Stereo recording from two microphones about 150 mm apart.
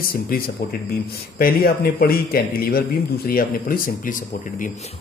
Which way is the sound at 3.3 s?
75° left (ahead or behind).